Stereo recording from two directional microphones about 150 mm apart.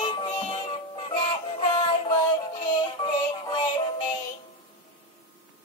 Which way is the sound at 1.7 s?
30° left (ahead or behind).